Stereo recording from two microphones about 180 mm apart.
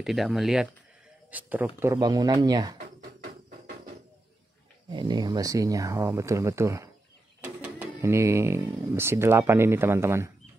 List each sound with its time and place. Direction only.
0.0 s speech: centre (ahead or behind); by 2.8 s 20° right (ahead or behind)
4.9 s speech: 25° right (ahead or behind)